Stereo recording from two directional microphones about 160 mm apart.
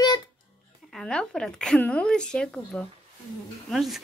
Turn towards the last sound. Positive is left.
turn(degrees=0)  # may be behind; listen again after turning